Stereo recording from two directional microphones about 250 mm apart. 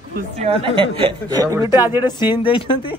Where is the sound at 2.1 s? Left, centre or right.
Centre.